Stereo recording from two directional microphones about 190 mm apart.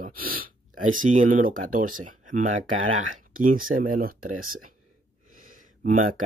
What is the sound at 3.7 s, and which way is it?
Speech, 45° right (ahead or behind).